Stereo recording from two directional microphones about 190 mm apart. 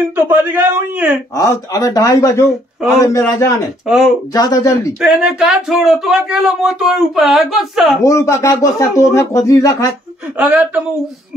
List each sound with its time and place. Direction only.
0.1 s speech: 10° right (ahead or behind)
1.3 s speech: 15° left (ahead or behind)
3.8 s speech: centre (ahead or behind)
4.3 s speech: 20° left (ahead or behind)
5.0 s speech: 5° right (ahead or behind)
8.0 s speech: 15° left (ahead or behind)
10.3 s speech: 10° right (ahead or behind)